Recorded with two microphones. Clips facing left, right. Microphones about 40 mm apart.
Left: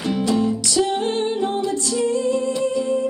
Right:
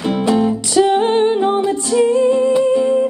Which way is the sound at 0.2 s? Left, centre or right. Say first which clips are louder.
Right 5 dB; right.